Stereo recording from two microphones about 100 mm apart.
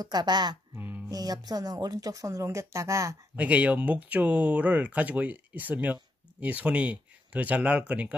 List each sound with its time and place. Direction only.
0.0 s speech: 45° right (ahead or behind)
0.7 s a sound: 15° right (ahead or behind)
1.0 s speech: 40° right (ahead or behind)
3.3 s speech: 15° right (ahead or behind)